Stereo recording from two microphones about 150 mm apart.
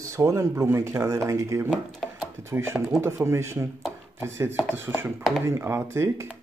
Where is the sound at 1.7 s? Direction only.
Centre (ahead or behind).